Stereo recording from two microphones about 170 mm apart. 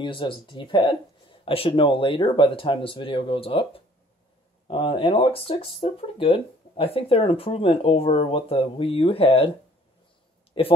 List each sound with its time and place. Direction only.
0.0 s speech: 30° left (ahead or behind)
10.6 s speech: 30° left (ahead or behind)